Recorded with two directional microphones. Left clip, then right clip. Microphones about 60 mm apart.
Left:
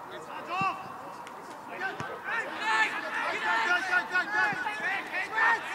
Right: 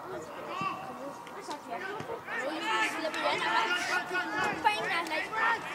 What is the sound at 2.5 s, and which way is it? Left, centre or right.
Chatter, centre.